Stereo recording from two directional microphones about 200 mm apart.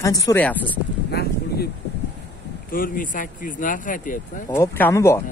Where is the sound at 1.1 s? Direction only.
55° left (ahead or behind).